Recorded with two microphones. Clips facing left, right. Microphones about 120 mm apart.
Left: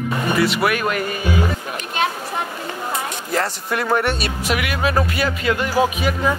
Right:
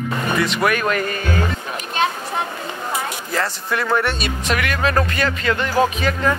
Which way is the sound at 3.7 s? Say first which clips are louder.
Left 1 dB; 15° left (ahead or behind).